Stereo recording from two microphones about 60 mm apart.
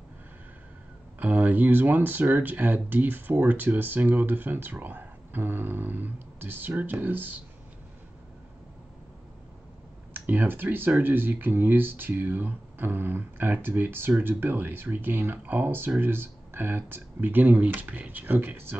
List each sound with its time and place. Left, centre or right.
1.2 s speech: right
10.1 s speech: right